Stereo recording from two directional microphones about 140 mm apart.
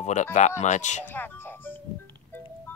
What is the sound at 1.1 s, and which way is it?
Music, 15° left (ahead or behind).